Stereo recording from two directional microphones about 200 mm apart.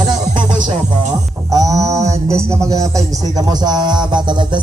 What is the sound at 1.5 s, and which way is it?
Speech, 15° right (ahead or behind).